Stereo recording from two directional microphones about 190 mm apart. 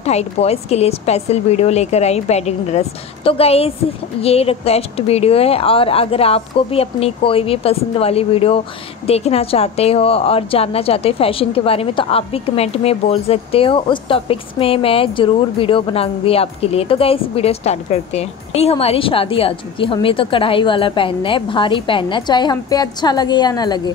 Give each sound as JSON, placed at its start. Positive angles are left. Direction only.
{"t": 0.0, "sound": "a woman's voice", "side_deg": 35}